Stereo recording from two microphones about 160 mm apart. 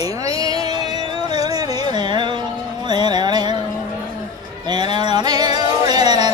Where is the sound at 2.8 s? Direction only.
25° right (ahead or behind).